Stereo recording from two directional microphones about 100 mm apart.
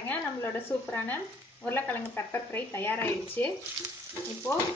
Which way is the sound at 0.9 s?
20° left (ahead or behind).